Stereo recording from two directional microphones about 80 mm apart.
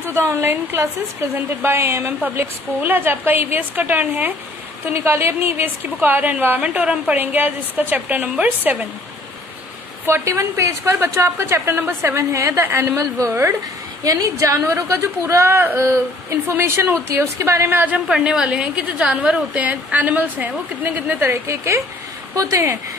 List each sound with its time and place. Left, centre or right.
0.0 s a woman's voice: right
10.0 s a woman's voice: right
17.9 s a woman's voice: centre; by 22.8 s right